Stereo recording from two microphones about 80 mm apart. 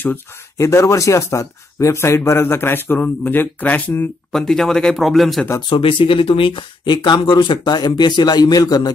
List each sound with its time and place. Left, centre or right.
0.6 s speech: left
4.3 s speech: centre
5.7 s speech: left